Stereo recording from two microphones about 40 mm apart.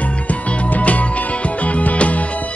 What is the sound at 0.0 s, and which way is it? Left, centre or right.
Music, left.